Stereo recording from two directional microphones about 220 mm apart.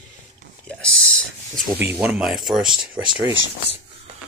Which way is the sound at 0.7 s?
5° left (ahead or behind).